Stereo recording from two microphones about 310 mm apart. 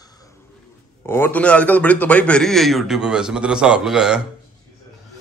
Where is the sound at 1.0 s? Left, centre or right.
Centre.